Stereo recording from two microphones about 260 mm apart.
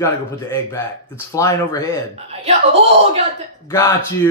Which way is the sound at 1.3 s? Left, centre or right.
Centre.